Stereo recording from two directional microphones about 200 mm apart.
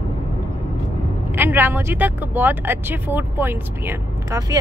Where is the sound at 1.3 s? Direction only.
10° right (ahead or behind).